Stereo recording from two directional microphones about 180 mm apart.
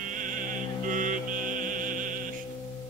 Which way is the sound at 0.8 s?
45° right (ahead or behind).